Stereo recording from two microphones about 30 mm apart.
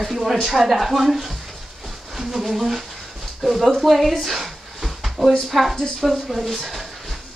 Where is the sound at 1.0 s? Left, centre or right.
Centre.